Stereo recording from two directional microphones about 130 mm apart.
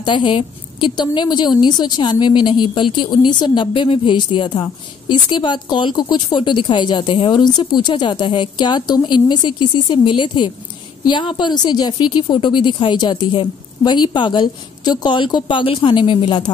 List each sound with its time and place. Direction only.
0.0 s a woman's voice: 40° left (ahead or behind)